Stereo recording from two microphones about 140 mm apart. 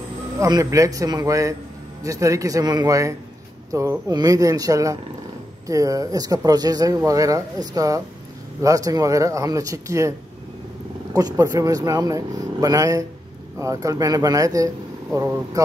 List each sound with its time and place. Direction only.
0.4 s speech: 25° right (ahead or behind)
11.1 s speech: 25° right (ahead or behind)